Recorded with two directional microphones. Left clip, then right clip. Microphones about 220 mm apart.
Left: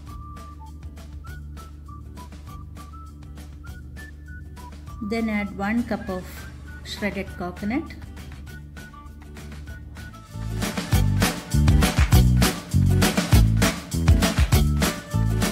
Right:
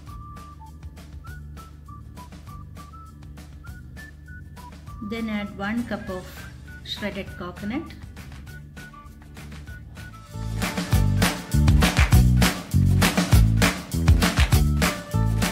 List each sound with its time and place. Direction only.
5.1 s speech: 30° left (ahead or behind)
6.9 s speech: 30° left (ahead or behind)
9.4 s music: centre (ahead or behind)